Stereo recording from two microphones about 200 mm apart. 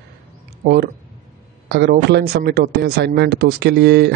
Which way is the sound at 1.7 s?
55° right (ahead or behind).